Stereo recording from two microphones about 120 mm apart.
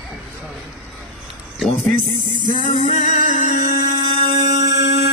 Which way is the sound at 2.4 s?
90° left.